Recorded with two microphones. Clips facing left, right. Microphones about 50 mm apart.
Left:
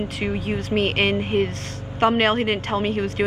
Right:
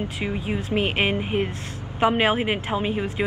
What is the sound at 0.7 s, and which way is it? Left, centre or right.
A woman's voice, centre.